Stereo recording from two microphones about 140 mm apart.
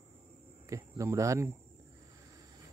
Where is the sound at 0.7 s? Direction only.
20° right (ahead or behind).